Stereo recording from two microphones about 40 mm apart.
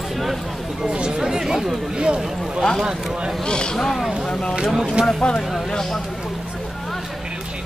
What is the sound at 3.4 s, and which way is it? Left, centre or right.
Speech, left.